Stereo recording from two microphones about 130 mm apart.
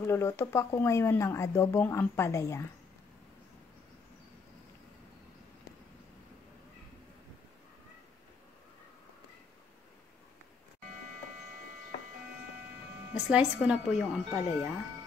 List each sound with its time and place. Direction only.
0.0 s speech: 20° left (ahead or behind)
13.3 s speech: 10° right (ahead or behind)